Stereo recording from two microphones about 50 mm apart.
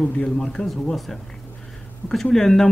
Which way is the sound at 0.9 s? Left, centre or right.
Centre.